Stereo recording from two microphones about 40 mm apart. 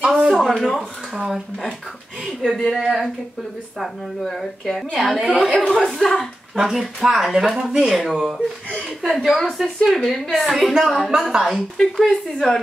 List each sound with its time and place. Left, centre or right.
0.0 s a sound: right
0.3 s a woman's voice: centre
2.5 s speech: centre
2.8 s speech: centre
4.3 s speech: centre
5.0 s speech: centre
5.7 s speech: centre
6.5 s speech: centre
8.7 s a woman's voice: centre
11.8 s a woman's voice: centre